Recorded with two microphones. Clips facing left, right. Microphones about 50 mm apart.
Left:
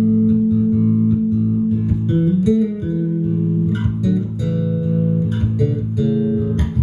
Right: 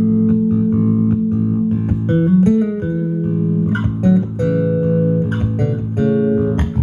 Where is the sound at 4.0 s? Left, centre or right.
Right.